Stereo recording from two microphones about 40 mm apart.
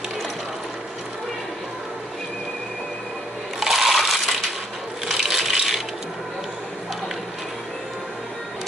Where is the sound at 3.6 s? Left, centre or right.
Centre.